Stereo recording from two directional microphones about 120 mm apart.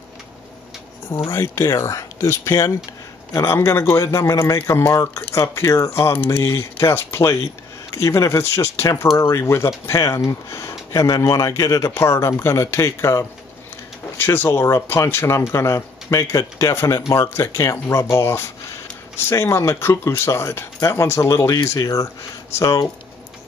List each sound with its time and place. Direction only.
1.3 s speech: 25° left (ahead or behind)